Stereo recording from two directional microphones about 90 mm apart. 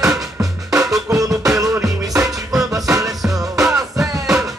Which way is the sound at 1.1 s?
40° right (ahead or behind).